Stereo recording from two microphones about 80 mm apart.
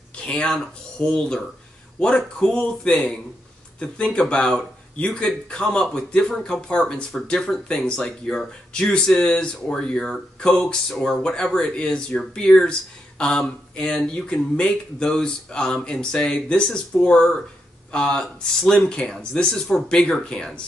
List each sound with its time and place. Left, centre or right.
0.1 s speech: centre